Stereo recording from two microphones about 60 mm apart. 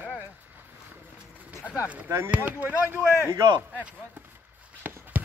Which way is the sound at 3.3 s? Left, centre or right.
Right.